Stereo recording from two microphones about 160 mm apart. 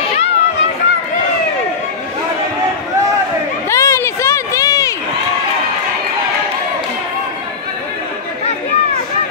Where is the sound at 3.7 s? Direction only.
15° left (ahead or behind).